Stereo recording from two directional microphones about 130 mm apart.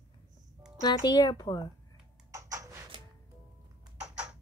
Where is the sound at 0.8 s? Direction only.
30° left (ahead or behind).